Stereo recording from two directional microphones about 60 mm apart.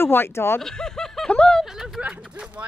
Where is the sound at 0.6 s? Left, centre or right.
Centre.